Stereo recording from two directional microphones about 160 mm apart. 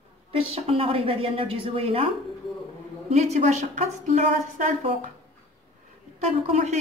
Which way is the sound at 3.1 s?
45° right (ahead or behind).